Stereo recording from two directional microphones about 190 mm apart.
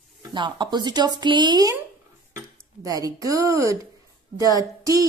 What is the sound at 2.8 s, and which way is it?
A woman's voice, 20° right (ahead or behind).